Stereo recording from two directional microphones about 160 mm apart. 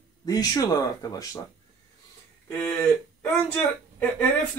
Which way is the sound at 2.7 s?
10° left (ahead or behind).